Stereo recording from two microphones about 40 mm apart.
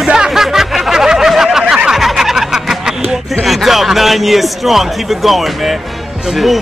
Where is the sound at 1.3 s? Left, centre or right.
Centre.